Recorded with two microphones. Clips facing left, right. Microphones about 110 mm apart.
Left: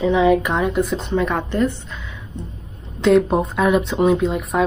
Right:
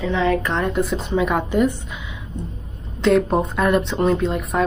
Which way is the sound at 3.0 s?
Centre (ahead or behind).